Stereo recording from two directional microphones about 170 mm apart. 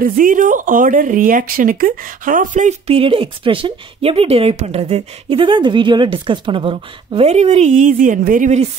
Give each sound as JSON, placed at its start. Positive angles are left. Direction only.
{"t": 0.0, "sound": "a woman's voice", "side_deg": -55}
{"t": 3.0, "sound": "a woman's voice", "side_deg": -30}